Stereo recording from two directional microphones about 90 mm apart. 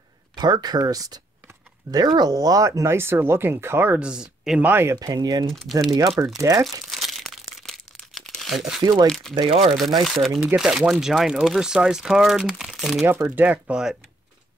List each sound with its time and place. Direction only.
0.4 s speech: 50° right (ahead or behind); by 4.0 s 25° right (ahead or behind)
4.0 s speech: 10° right (ahead or behind)
4.6 s speech: 25° right (ahead or behind)
4.9 s speech: 50° right (ahead or behind)
5.5 s speech: 5° left (ahead or behind)
5.8 s speech: 45° right (ahead or behind)
6.6 s crumpling: centre (ahead or behind)
9.3 s speech: 75° right (ahead or behind)
10.0 s speech: centre (ahead or behind)
13.3 s speech: 20° right (ahead or behind)